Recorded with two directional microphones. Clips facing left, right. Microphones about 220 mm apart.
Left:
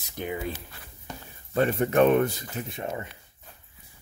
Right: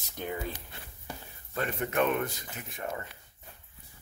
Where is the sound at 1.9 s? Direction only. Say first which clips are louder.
Left 8 dB; 35° left (ahead or behind).